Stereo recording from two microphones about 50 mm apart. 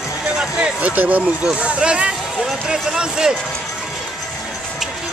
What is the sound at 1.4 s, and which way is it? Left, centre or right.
Speech, centre.